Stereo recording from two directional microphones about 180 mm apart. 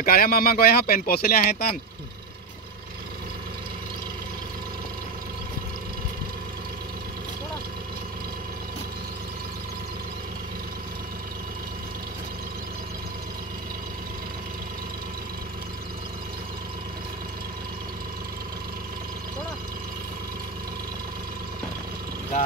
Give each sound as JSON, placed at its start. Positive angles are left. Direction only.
{"t": 0.0, "sound": "speech", "side_deg": 55}